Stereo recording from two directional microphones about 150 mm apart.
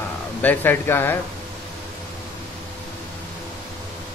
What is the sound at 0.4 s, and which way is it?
Speech, 10° left (ahead or behind).